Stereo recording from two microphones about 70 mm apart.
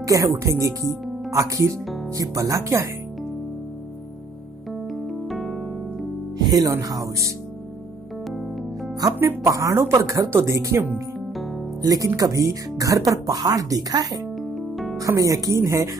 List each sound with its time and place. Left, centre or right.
0.0 s speech: right
4.8 s keyboard: centre
6.3 s music: right
6.7 s speech: right
9.0 s speech: right
11.8 s speech: right
12.2 s speech: right
14.5 s music: centre
15.0 s speech: right